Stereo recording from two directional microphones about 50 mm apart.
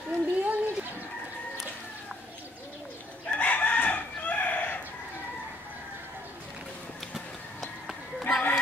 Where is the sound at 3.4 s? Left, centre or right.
Left.